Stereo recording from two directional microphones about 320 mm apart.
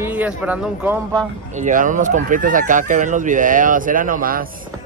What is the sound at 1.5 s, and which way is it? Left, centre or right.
A man's voice, right.